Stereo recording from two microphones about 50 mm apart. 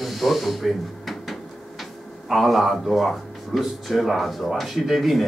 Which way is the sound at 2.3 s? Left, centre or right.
Centre.